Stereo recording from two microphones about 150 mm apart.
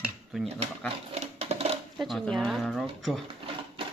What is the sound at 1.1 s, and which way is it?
Sewing machine, 45° right (ahead or behind).